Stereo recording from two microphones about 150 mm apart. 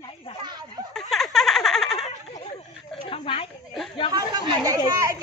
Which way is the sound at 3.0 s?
35° left (ahead or behind).